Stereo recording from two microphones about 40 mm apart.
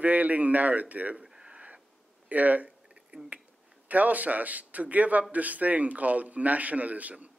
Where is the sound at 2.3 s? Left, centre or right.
Right.